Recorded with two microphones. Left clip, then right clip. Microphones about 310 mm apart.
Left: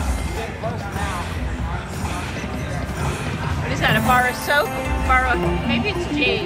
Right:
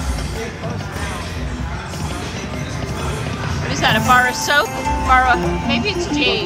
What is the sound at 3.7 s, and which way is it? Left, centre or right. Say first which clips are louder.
Speech: right 4 dB; centre.